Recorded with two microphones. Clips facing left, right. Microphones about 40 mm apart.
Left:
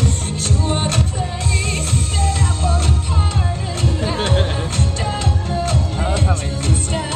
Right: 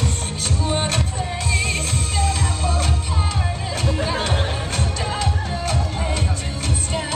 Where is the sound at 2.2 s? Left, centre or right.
Left.